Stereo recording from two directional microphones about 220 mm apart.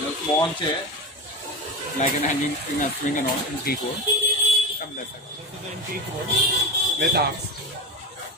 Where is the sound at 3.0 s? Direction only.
35° left (ahead or behind).